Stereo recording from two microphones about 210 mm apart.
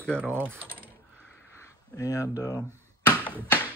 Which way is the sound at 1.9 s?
15° left (ahead or behind).